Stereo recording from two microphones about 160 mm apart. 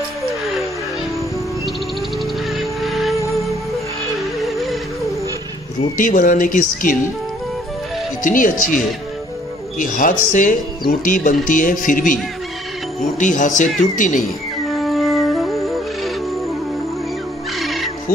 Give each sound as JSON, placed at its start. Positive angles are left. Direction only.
{"t": 2.5, "sound": "music", "side_deg": 0}
{"t": 4.2, "sound": "music", "side_deg": 0}
{"t": 5.9, "sound": "speech", "side_deg": 60}
{"t": 8.2, "sound": "speech", "side_deg": 55}
{"t": 13.2, "sound": "speech", "side_deg": 50}
{"t": 14.7, "sound": "music", "side_deg": 0}
{"t": 17.6, "sound": "music", "side_deg": 0}